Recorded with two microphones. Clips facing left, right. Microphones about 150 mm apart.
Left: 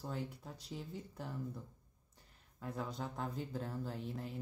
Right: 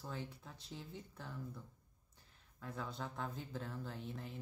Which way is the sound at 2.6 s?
40° left (ahead or behind).